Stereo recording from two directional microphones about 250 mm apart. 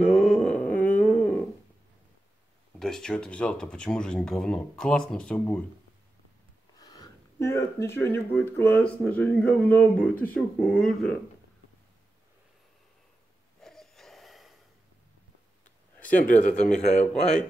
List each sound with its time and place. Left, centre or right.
0.0 s a sound: centre
2.8 s speech: centre
6.8 s speech: centre
13.6 s gasp: centre
16.0 s a sound: centre
16.3 s a man's voice: left